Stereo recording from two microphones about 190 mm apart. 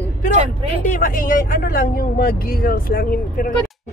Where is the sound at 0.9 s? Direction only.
45° left (ahead or behind).